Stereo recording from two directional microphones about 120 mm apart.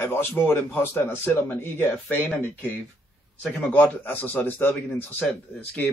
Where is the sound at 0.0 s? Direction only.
20° left (ahead or behind).